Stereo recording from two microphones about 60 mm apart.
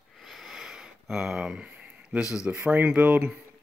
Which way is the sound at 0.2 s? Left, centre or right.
Centre.